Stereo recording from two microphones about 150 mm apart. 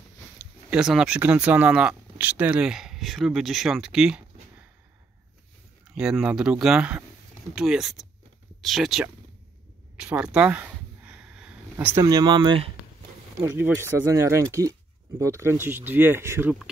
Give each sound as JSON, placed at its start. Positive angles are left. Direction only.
{"t": 0.7, "sound": "speech", "side_deg": -5}
{"t": 5.9, "sound": "speech", "side_deg": -5}
{"t": 10.0, "sound": "a sound", "side_deg": -10}
{"t": 12.0, "sound": "speech", "side_deg": -25}
{"t": 13.4, "sound": "speech", "side_deg": -20}